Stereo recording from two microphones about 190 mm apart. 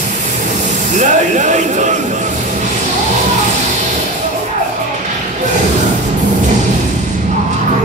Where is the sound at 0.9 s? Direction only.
40° right (ahead or behind).